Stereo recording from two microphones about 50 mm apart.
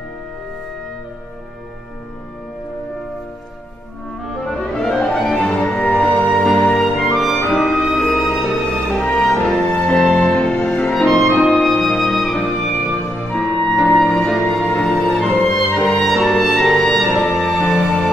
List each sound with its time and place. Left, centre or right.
4.5 s music: centre
5.4 s music: centre
6.2 s music: centre
8.9 s music: centre
9.4 s music: centre
14.0 s music: left
14.3 s music: centre